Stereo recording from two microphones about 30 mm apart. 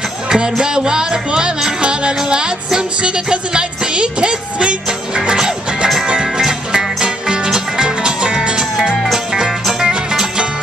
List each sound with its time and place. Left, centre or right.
0.3 s music: right
5.1 s jingle bell: right
6.0 s music: right
6.4 s music: centre